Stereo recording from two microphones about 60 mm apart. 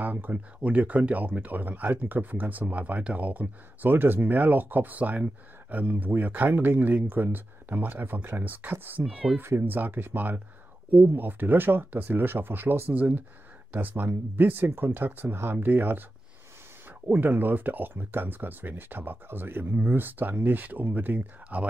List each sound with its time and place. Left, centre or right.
0.0 s speech: right
12.9 s speech: right
17.1 s speech: right